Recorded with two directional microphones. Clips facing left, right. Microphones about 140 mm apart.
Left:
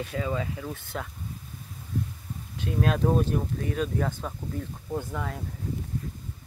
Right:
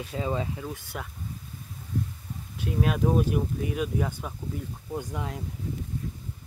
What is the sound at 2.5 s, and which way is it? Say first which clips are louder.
Speech: left 1 dB; 10° right (ahead or behind).